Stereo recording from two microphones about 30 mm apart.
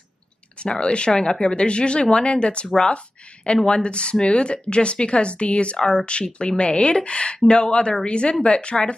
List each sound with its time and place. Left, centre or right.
0.6 s speech: left